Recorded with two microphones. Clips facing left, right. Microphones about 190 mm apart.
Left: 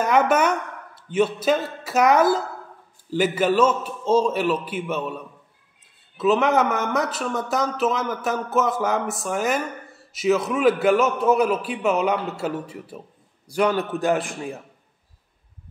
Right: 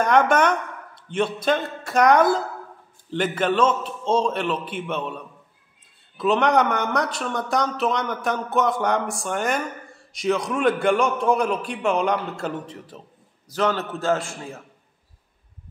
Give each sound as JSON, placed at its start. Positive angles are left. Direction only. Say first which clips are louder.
{"t": 0.0, "sound": "a man's voice", "louder": "right 1 dB", "side_deg": 5}